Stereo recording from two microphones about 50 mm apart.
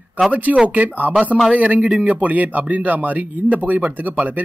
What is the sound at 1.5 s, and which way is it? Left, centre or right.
A man's voice, right.